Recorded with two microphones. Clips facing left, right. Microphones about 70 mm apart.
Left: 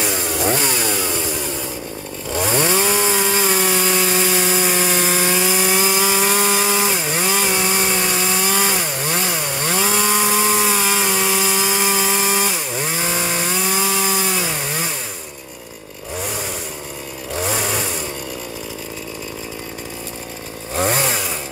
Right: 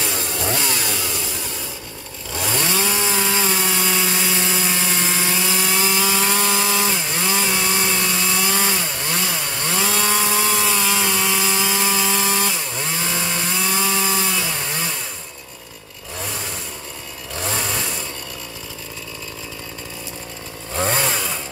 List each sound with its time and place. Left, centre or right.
0.0 s chainsaw: centre
0.6 s chainsaw: left
2.3 s chainsaw: left
4.3 s sawing: centre
17.3 s chainsaw: centre
20.7 s chainsaw: centre